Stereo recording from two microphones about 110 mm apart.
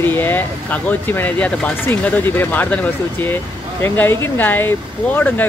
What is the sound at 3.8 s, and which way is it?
Speech, 20° left (ahead or behind).